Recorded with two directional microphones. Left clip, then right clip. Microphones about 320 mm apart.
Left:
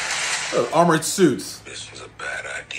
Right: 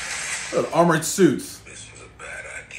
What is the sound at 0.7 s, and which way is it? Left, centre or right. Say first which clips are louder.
Speech: left 1 dB; centre.